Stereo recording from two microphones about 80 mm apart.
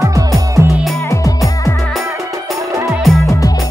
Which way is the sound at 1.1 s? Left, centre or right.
Left.